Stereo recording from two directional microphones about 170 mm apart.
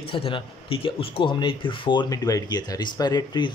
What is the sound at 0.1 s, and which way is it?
A man's voice, 30° left (ahead or behind).